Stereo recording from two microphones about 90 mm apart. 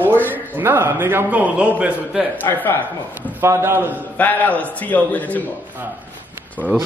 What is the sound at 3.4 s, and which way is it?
Speech, 30° right (ahead or behind).